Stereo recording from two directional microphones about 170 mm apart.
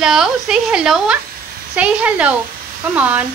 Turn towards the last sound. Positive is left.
turn(degrees=-10)  # may be behind; listen again after turning